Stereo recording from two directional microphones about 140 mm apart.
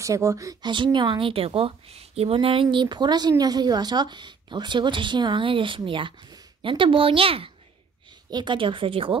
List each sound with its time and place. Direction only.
0.0 s a woman's voice: 20° right (ahead or behind); by 9.1 s 40° right (ahead or behind)